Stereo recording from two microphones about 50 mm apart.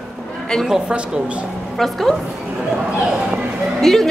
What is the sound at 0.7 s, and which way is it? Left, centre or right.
Speech, right.